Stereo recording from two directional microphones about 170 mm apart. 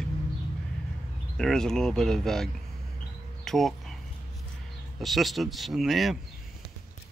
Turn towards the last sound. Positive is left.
turn(degrees=0)  # may be behind; listen again after turning